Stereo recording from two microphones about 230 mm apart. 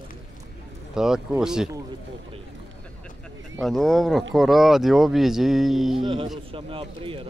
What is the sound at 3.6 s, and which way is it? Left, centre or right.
Speech, centre.